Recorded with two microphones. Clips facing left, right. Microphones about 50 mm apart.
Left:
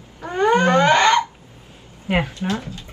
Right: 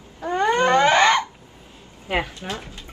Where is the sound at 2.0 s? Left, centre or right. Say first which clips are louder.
Left 3 dB; left.